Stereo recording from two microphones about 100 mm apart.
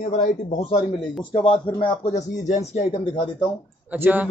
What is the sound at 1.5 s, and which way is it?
Speech, 65° left (ahead or behind).